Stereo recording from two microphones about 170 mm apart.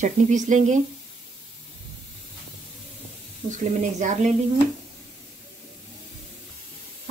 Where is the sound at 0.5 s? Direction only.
45° right (ahead or behind).